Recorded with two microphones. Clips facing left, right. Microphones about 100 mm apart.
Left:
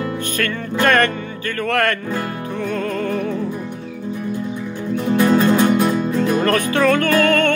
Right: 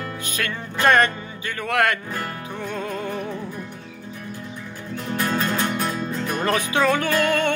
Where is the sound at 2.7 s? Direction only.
15° right (ahead or behind).